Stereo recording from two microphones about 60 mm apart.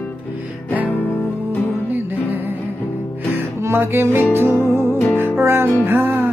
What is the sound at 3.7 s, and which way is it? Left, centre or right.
Music, right.